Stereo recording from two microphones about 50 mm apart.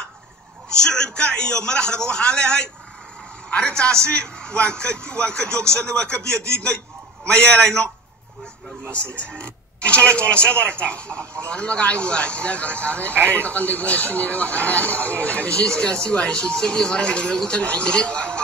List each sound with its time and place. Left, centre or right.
0.8 s a man's voice: centre
8.9 s speech: left
13.1 s speech: right
13.4 s speech: left